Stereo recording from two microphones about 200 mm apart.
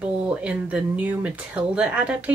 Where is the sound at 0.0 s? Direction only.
5° right (ahead or behind).